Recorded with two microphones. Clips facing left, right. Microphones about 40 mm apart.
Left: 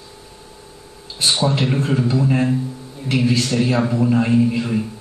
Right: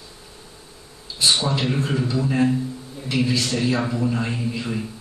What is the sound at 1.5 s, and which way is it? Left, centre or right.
Speech, left.